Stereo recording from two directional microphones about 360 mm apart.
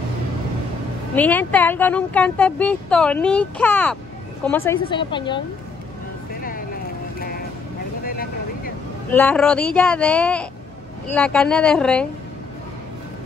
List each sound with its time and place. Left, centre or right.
1.1 s a woman's voice: centre
7.2 s vehicle: left
9.1 s speech: centre